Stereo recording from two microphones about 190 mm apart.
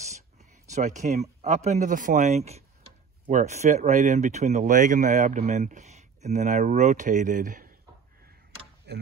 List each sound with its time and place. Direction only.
0.1 s a sound: 40° right (ahead or behind)
1.4 s speech: 35° right (ahead or behind)
8.9 s speech: 60° right (ahead or behind)